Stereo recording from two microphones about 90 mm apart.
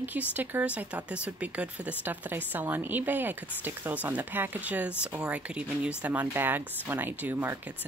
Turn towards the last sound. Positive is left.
turn(degrees=-25)  # may be behind; listen again after turning